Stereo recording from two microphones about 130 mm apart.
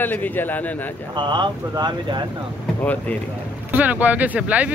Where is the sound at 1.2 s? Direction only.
35° right (ahead or behind).